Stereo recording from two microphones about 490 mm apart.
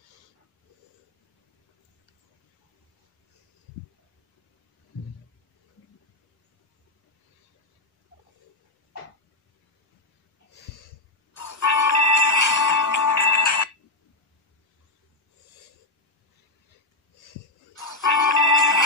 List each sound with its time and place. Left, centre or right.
10.5 s snort: left
11.3 s music: left
17.2 s music: left